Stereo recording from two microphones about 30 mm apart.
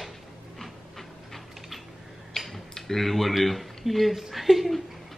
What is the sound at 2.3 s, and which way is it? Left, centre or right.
Tick-tock, centre.